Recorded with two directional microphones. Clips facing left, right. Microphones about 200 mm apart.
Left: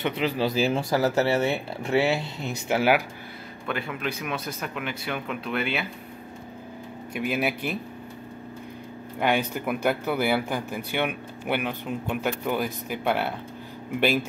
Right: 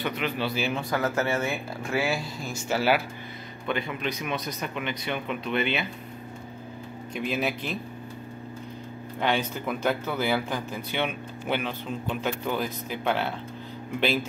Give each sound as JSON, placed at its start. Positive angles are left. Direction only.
{"t": 0.0, "sound": "speech", "side_deg": 30}
{"t": 3.6, "sound": "a man's voice", "side_deg": 5}
{"t": 7.2, "sound": "speech", "side_deg": 10}
{"t": 9.2, "sound": "speech", "side_deg": 10}